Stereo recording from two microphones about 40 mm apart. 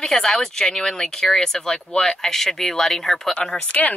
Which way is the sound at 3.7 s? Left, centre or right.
Left.